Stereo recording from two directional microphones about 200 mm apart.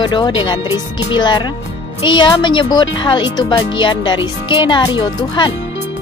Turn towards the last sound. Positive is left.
turn(degrees=20)  # may be behind; listen again after turning